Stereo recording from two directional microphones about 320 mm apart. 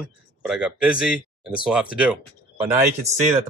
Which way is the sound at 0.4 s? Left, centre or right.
Centre.